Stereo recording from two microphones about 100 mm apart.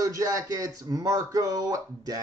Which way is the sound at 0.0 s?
35° right (ahead or behind).